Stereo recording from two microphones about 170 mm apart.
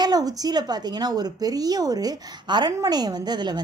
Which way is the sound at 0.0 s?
20° right (ahead or behind).